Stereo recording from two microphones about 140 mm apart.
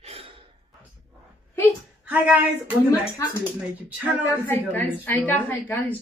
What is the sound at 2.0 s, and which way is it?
Speech, 10° right (ahead or behind).